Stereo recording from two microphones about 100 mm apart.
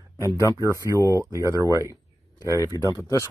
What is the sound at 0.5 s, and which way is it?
Speech, 30° right (ahead or behind).